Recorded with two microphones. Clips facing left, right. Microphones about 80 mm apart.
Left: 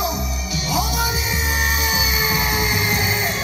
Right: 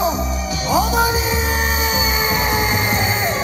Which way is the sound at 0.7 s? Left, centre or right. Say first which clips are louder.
Right 6 dB; right.